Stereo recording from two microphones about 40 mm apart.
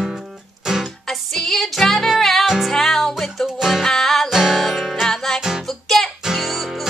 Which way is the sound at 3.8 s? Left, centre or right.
Centre.